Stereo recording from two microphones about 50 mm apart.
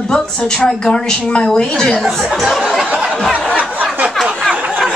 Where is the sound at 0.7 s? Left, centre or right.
Centre.